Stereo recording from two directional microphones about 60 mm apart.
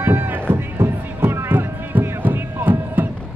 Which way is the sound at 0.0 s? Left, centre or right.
Right.